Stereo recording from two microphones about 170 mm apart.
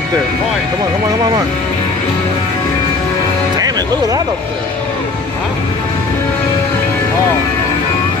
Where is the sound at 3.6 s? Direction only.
20° right (ahead or behind).